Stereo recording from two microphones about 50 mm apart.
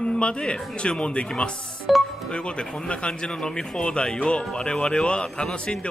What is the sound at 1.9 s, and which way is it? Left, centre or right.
Music, centre.